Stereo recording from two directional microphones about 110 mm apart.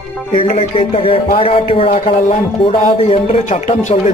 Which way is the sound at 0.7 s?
55° left (ahead or behind).